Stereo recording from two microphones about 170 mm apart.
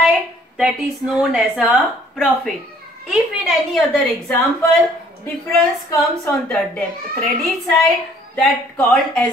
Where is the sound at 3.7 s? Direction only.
Centre (ahead or behind).